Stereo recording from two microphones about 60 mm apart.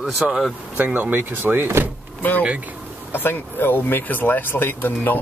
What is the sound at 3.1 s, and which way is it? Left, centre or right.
Speech, left.